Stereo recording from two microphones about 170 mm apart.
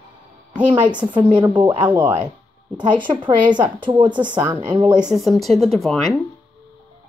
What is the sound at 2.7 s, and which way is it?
Speech, 5° right (ahead or behind).